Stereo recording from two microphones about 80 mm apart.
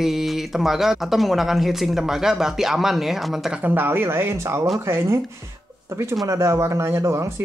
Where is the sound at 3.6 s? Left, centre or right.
Right.